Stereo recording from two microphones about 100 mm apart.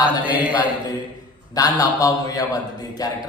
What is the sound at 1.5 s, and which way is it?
Speech, 35° left (ahead or behind).